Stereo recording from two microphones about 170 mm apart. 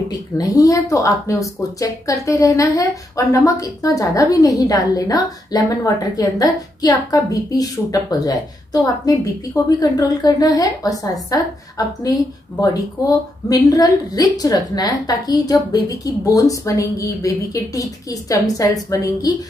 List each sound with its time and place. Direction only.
0.1 s a woman's voice: 20° left (ahead or behind)